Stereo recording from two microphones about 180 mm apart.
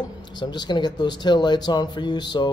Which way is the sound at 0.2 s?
25° left (ahead or behind).